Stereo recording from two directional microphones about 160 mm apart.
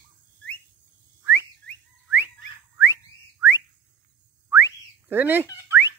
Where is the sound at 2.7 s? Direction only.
15° right (ahead or behind).